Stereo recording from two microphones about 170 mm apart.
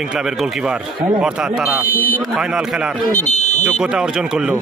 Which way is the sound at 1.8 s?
55° left (ahead or behind).